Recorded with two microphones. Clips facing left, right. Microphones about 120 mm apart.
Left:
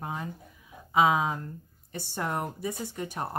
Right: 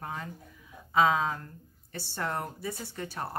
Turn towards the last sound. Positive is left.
turn(degrees=20)  # may be behind; listen again after turning